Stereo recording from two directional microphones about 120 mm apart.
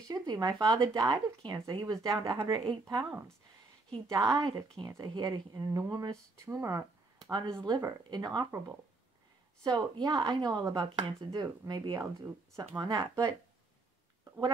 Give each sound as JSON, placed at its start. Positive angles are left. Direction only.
{"t": 0.1, "sound": "speech", "side_deg": -35}
{"t": 4.1, "sound": "a woman's voice", "side_deg": -25}
{"t": 9.6, "sound": "speech", "side_deg": -35}
{"t": 11.2, "sound": "speech", "side_deg": -30}